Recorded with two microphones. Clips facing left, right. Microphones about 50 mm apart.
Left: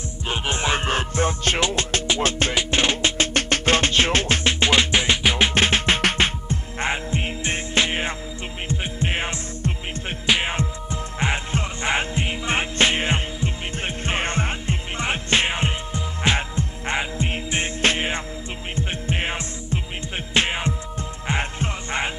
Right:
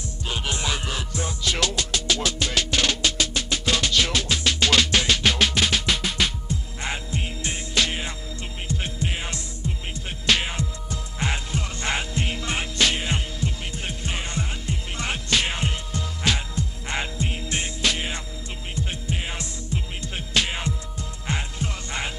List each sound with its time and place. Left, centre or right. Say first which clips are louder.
0.3 s music: left 5 dB; left
1.6 s music: left 3 dB; left
3.3 s music: left 5 dB; left
5.5 s music: left 4 dB; left
10.4 s music: left 4 dB; left